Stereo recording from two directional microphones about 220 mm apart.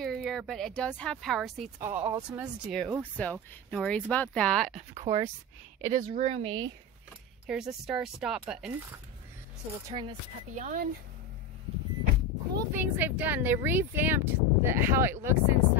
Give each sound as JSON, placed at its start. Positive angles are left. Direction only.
{"t": 0.0, "sound": "speech", "side_deg": 0}
{"t": 1.8, "sound": "speech", "side_deg": -15}
{"t": 4.7, "sound": "speech", "side_deg": -30}
{"t": 7.4, "sound": "speech", "side_deg": 0}
{"t": 9.8, "sound": "speech", "side_deg": -20}
{"t": 10.5, "sound": "speech", "side_deg": -35}
{"t": 12.5, "sound": "speech", "side_deg": -10}